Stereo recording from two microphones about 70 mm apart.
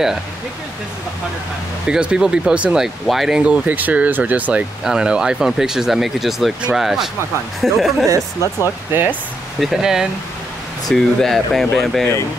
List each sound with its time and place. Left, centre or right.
1.9 s speech: centre
2.8 s speech: centre
3.3 s speech: centre
4.8 s speech: centre
8.4 s speech: left
9.6 s speech: centre
10.9 s speech: centre